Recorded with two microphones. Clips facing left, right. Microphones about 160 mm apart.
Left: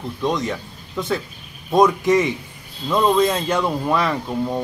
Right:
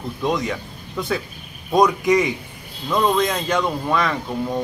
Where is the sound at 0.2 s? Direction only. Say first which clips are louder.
Even; centre (ahead or behind).